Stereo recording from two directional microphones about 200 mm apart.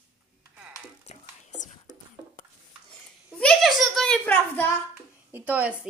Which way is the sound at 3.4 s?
Centre (ahead or behind).